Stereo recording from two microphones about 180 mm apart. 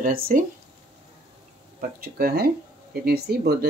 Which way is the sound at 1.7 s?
55° right (ahead or behind).